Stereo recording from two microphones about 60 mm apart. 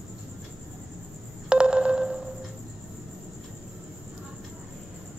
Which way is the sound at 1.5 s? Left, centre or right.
Centre.